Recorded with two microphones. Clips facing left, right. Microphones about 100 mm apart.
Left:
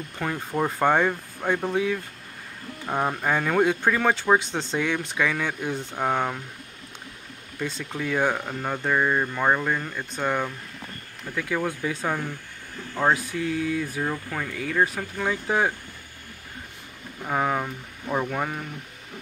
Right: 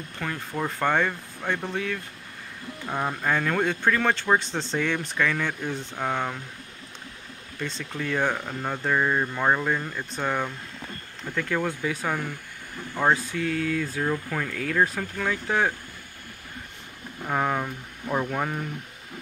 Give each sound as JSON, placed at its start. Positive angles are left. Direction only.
{"t": 0.2, "sound": "speech", "side_deg": 15}
{"t": 7.6, "sound": "speech", "side_deg": 10}
{"t": 14.1, "sound": "speech", "side_deg": 5}
{"t": 17.2, "sound": "speech", "side_deg": 5}